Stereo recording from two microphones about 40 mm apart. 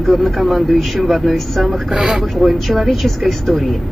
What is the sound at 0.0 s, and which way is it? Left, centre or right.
Speech, centre.